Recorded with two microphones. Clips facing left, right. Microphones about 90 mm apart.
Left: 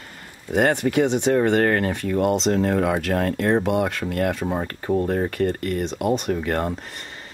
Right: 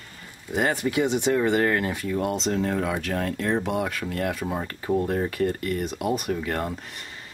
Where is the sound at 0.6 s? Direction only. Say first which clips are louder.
Left 5 dB; 55° left (ahead or behind).